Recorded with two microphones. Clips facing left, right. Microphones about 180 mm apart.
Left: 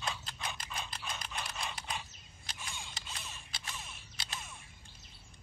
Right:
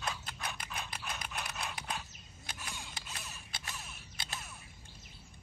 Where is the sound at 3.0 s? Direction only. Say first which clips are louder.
Even; centre (ahead or behind).